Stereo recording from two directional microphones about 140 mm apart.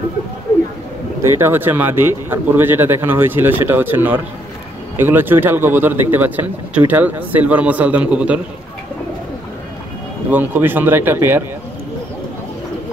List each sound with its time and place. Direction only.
1.2 s a man's voice: 20° right (ahead or behind)
10.3 s a man's voice: 15° right (ahead or behind)